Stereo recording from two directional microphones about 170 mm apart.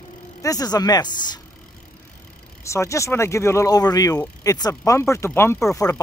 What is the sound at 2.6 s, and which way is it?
Speech, 15° left (ahead or behind).